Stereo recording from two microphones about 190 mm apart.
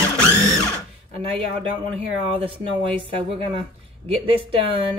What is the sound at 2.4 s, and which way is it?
Speech, 25° right (ahead or behind).